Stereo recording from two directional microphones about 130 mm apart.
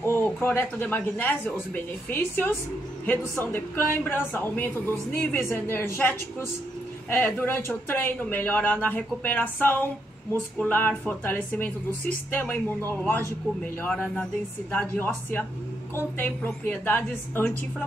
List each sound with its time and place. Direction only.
0.0 s speech: 15° left (ahead or behind)